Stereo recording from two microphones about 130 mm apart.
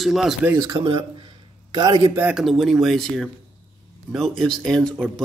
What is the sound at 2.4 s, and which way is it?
Speech, centre (ahead or behind).